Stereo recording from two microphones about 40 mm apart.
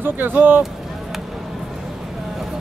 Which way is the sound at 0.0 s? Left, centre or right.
Right.